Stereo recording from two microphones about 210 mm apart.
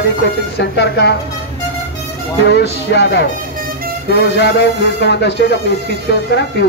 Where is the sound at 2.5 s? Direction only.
55° left (ahead or behind).